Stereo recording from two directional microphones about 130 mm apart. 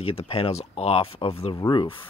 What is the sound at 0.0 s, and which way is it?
Speech, 50° left (ahead or behind).